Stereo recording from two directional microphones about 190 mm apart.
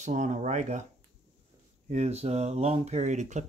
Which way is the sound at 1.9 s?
35° right (ahead or behind).